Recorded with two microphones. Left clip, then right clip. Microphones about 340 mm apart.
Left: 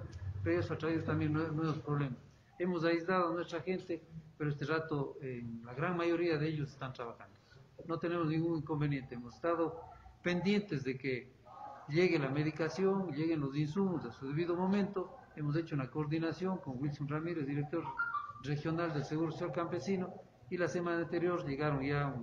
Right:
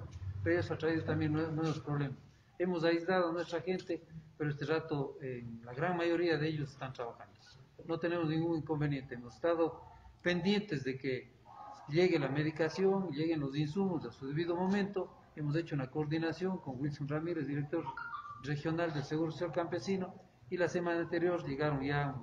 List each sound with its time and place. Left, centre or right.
0.4 s a man's voice: right